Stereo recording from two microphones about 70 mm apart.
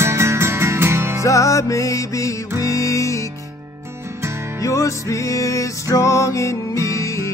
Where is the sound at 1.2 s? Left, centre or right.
Left.